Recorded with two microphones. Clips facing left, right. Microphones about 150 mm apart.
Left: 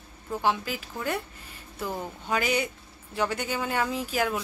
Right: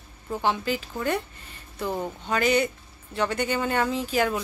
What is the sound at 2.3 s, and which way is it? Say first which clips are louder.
Speech: right 4 dB; 10° left (ahead or behind).